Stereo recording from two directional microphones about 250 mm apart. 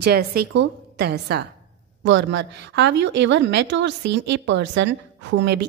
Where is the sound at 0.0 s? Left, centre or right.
Right.